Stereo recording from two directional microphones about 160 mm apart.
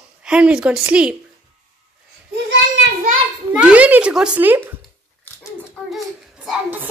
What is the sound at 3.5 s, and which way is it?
A woman's voice, 10° right (ahead or behind).